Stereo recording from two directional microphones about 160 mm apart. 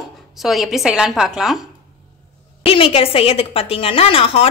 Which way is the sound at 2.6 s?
35° left (ahead or behind).